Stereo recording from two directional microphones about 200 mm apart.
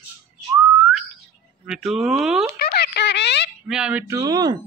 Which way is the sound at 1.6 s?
5° right (ahead or behind).